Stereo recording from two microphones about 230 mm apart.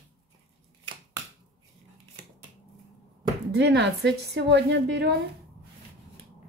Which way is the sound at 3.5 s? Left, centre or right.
Right.